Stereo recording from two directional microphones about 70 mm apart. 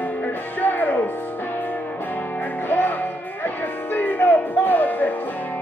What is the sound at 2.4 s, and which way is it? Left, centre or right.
Music, left.